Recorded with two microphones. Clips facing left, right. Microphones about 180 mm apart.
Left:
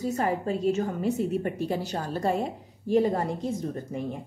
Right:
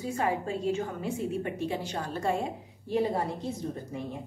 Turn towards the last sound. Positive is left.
turn(degrees=50)  # may be behind; listen again after turning